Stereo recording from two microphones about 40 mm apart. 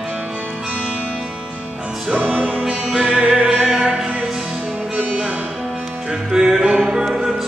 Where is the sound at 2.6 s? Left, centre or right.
Right.